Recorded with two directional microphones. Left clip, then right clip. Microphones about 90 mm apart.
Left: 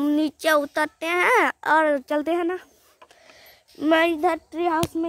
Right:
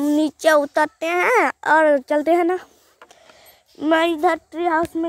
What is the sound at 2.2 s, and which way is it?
Speech, 30° right (ahead or behind).